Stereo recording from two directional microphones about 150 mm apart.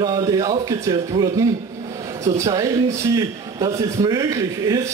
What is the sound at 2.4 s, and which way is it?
A man's voice, 25° right (ahead or behind).